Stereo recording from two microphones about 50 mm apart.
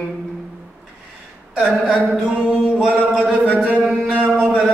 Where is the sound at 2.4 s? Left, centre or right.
Centre.